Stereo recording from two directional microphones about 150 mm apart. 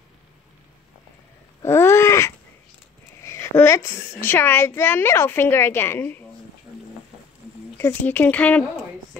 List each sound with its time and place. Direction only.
1.6 s a sound: 15° left (ahead or behind)
4.2 s a woman's voice: 15° left (ahead or behind)
7.7 s a woman's voice: 15° left (ahead or behind)